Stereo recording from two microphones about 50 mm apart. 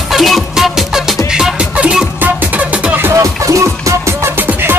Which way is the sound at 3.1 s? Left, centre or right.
Right.